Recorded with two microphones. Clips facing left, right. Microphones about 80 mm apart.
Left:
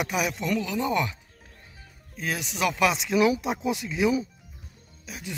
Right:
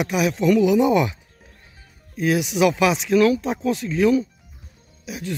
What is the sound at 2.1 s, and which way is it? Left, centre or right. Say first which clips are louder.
Speech: right 11 dB; centre.